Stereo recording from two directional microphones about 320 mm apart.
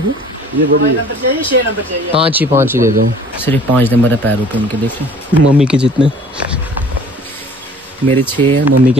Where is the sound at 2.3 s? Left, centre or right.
Centre.